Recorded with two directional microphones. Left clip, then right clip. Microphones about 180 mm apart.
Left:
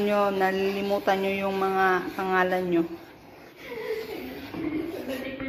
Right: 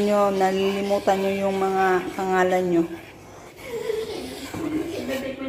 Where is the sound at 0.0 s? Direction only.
15° right (ahead or behind).